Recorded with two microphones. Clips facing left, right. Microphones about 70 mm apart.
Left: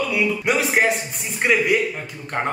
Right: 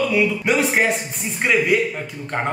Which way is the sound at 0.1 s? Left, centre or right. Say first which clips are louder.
Right 2 dB; centre.